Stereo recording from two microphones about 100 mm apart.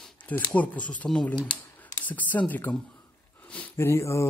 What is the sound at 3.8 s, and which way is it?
Speech, 30° left (ahead or behind).